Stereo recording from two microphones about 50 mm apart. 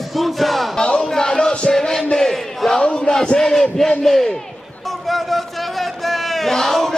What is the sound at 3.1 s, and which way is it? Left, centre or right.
Battle cry, centre.